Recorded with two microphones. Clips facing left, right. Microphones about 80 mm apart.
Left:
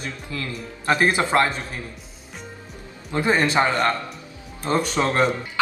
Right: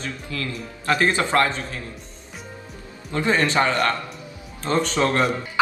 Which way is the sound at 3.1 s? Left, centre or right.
Centre.